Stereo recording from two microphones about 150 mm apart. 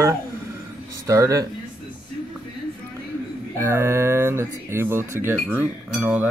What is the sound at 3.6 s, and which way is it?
Speech, 15° right (ahead or behind).